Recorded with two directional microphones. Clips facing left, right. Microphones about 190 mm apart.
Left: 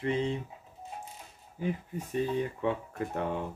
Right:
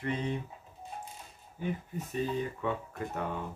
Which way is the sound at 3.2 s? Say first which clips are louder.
Left 4 dB; 25° left (ahead or behind).